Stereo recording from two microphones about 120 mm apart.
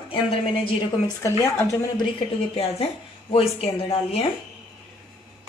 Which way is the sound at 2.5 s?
55° left (ahead or behind).